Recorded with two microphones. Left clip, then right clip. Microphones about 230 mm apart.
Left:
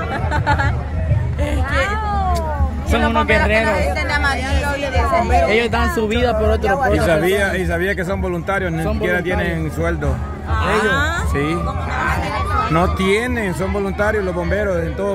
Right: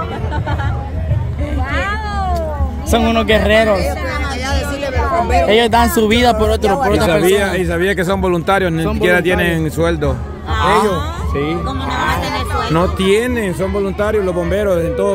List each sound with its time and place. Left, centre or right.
2.9 s speech: right
5.3 s speech: right
7.1 s speech: centre
10.6 s a sound: right
12.7 s speech: centre